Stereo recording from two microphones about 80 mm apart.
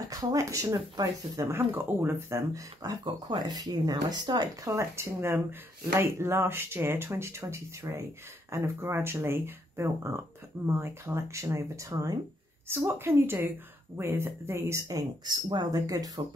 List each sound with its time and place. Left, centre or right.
0.1 s speech: right
1.5 s speech: right
4.6 s speech: right
12.6 s a woman's voice: right
15.2 s speech: right
15.7 s speech: right